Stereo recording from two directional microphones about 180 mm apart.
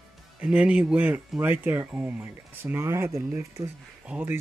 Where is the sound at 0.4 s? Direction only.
5° right (ahead or behind).